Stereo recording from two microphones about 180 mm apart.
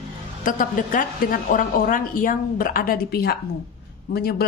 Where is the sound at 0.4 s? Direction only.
45° left (ahead or behind).